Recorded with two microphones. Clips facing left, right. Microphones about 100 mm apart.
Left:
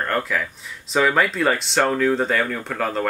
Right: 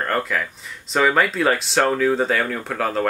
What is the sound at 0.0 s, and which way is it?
Speech, centre (ahead or behind).